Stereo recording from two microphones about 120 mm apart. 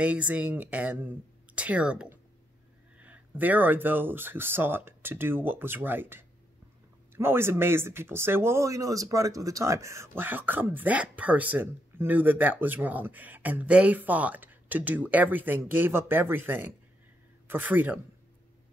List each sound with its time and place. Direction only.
0.0 s speech: 10° right (ahead or behind)